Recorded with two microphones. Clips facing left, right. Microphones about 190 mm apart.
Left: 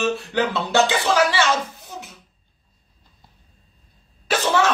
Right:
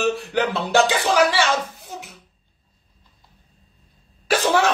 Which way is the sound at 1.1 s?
15° right (ahead or behind).